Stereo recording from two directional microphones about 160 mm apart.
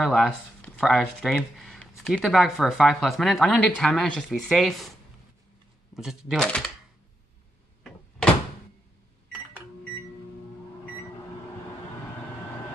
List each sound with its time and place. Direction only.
0.0 s speech: centre (ahead or behind)
5.9 s speech: centre (ahead or behind)